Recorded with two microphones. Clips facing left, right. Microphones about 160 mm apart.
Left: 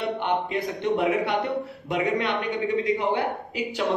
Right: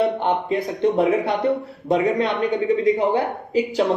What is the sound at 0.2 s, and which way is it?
A man's voice, 35° right (ahead or behind).